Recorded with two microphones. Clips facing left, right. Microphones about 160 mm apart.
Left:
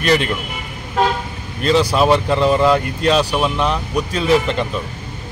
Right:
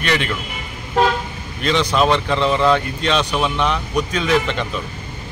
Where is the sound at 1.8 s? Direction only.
5° left (ahead or behind).